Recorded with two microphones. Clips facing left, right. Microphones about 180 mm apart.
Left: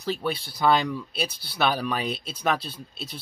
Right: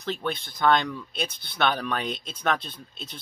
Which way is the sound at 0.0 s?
5° left (ahead or behind).